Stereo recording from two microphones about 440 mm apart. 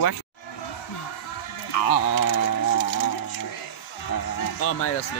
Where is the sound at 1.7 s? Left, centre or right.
Left.